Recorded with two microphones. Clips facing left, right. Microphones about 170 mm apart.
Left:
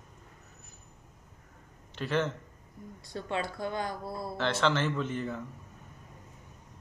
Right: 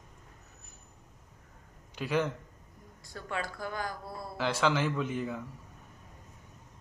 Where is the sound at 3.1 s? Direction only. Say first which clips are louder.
Left 3 dB; 25° left (ahead or behind).